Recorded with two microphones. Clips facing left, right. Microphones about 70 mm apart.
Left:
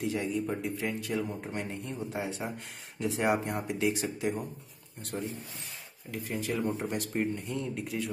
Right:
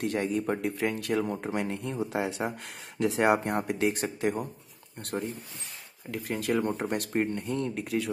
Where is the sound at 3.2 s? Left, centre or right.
Right.